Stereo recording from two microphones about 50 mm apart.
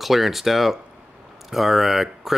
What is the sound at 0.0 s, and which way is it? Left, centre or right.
Speech, centre.